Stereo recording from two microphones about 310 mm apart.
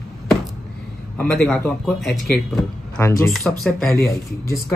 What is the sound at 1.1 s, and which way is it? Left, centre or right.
A man's voice, centre.